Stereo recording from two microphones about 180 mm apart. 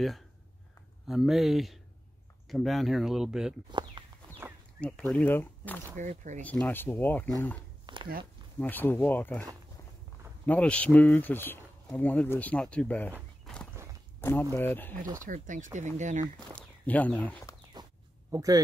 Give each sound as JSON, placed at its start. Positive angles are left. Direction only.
{"t": 1.0, "sound": "speech", "side_deg": 0}
{"t": 4.7, "sound": "speech", "side_deg": 5}
{"t": 5.9, "sound": "speech", "side_deg": -45}
{"t": 6.4, "sound": "speech", "side_deg": 10}
{"t": 7.8, "sound": "a sound", "side_deg": -25}
{"t": 8.5, "sound": "speech", "side_deg": 10}
{"t": 14.5, "sound": "speech", "side_deg": 10}
{"t": 15.1, "sound": "speech", "side_deg": -45}
{"t": 16.3, "sound": "speech", "side_deg": 5}
{"t": 18.3, "sound": "speech", "side_deg": -20}